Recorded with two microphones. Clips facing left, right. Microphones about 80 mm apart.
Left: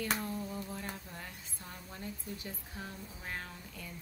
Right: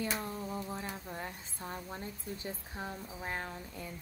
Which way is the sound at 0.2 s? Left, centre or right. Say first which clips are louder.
Even; right.